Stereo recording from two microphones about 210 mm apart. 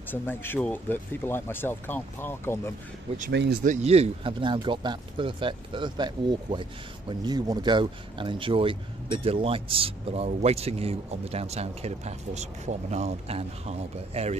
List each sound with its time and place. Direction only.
0.1 s speech: 10° left (ahead or behind)
3.3 s speech: 50° right (ahead or behind)
3.6 s speech: 35° right (ahead or behind)